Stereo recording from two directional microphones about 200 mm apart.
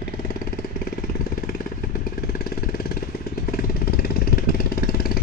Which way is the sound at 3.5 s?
50° left (ahead or behind).